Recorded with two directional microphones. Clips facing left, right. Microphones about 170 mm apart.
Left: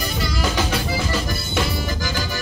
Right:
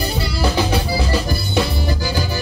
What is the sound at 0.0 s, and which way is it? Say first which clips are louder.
Music: right 3 dB; 35° right (ahead or behind).